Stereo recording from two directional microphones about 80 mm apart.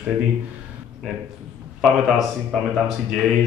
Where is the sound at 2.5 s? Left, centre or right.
Centre.